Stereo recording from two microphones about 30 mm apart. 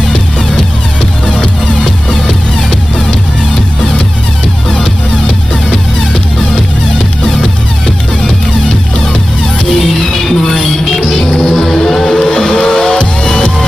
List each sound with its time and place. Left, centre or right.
10.0 s music: centre
11.2 s music: left
11.5 s music: centre